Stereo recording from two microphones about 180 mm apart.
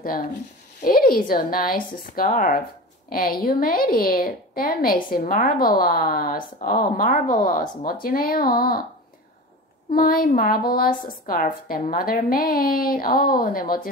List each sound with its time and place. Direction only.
0.0 s a woman's voice: 50° left (ahead or behind)
9.9 s a woman's voice: 55° left (ahead or behind)